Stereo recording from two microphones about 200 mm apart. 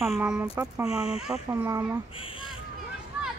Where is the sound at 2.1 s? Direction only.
25° left (ahead or behind).